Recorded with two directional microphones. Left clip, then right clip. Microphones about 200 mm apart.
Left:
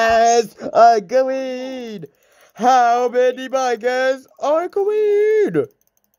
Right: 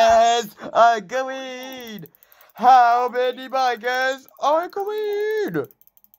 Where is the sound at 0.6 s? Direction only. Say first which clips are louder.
Left 4 dB; 45° left (ahead or behind).